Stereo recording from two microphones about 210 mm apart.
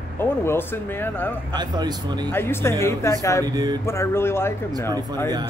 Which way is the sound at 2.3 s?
10° left (ahead or behind).